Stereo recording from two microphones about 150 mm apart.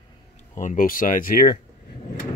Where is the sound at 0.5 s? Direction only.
60° left (ahead or behind); by 1.5 s 80° left.